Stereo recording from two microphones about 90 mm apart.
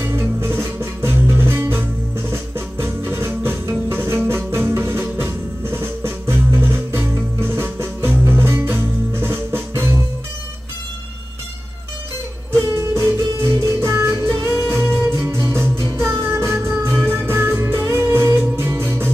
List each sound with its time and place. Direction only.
0.0 s music: 25° right (ahead or behind)
12.5 s music: 35° right (ahead or behind)